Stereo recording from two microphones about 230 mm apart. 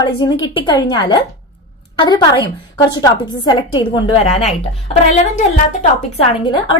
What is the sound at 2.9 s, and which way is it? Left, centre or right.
A woman's voice, centre.